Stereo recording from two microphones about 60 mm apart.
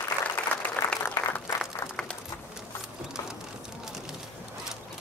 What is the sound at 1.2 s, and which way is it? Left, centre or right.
Applause, left.